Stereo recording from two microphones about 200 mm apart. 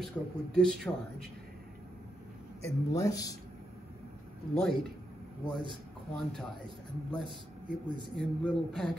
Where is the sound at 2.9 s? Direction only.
15° left (ahead or behind).